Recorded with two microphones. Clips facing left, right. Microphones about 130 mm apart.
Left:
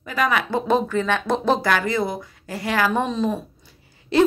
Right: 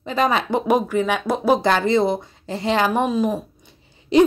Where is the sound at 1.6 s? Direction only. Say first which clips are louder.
Right 4 dB; 25° right (ahead or behind).